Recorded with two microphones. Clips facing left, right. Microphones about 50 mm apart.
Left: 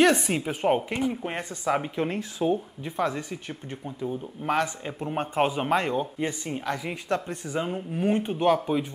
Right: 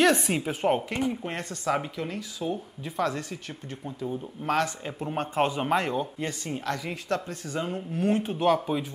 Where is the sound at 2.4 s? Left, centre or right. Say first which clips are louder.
Left 6 dB; centre.